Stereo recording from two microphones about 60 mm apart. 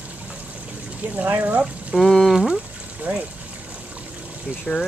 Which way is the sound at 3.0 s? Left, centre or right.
Right.